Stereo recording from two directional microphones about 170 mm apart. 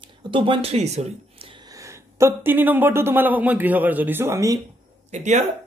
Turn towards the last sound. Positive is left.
turn(degrees=-45)  # may be behind; listen again after turning